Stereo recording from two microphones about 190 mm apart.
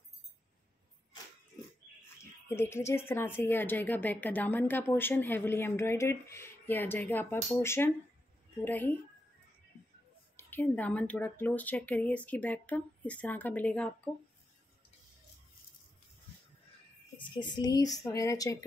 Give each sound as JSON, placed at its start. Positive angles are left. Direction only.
{"t": 2.4, "sound": "a woman's voice", "side_deg": 10}
{"t": 10.3, "sound": "a woman's voice", "side_deg": 10}
{"t": 17.4, "sound": "a woman's voice", "side_deg": 20}